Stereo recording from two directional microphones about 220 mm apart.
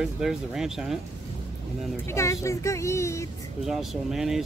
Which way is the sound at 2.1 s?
15° left (ahead or behind).